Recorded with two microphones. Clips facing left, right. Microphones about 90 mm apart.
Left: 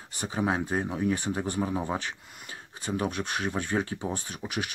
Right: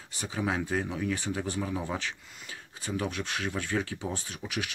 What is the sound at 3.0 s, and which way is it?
Speech, 20° left (ahead or behind).